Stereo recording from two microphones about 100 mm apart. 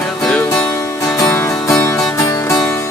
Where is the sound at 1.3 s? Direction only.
25° left (ahead or behind).